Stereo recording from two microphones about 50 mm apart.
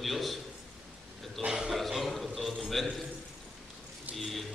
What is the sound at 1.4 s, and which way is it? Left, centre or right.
Speech, centre.